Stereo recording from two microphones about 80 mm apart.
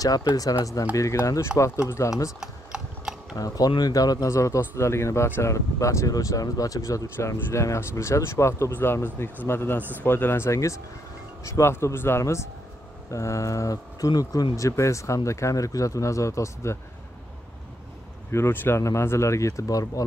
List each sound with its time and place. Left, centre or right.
0.0 s speech: left
2.4 s typing: centre
3.3 s speech: left
4.3 s speech: left
7.2 s speech: left
8.7 s a man's voice: left
18.3 s a man's voice: left